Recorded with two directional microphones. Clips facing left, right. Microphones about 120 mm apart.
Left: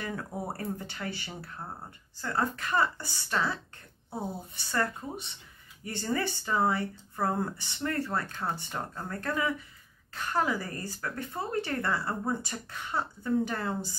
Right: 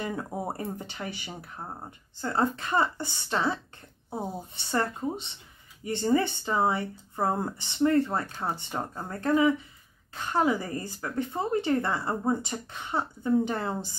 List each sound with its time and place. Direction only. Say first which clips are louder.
0.0 s a woman's voice: right 3 dB; 25° right (ahead or behind)